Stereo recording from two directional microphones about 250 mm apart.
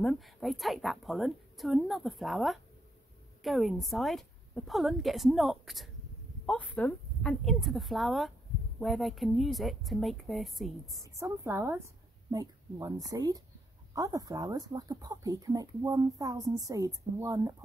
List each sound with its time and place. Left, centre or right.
0.0 s a woman's voice: centre
11.1 s speech: centre